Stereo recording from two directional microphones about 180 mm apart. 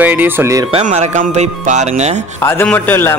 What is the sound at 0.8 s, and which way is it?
Speech, 40° right (ahead or behind).